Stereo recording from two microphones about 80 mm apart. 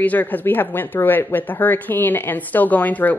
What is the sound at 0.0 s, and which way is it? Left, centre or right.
Speech, left.